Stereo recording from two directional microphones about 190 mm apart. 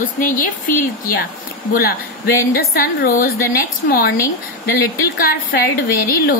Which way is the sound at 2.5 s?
50° left (ahead or behind).